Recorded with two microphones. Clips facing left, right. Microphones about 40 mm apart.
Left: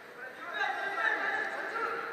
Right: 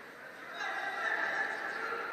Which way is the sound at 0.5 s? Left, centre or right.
Left.